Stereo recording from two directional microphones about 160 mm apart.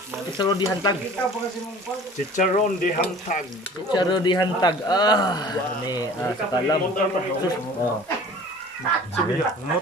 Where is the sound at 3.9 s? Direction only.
30° left (ahead or behind).